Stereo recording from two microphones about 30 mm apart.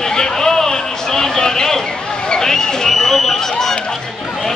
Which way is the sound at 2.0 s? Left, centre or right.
Left.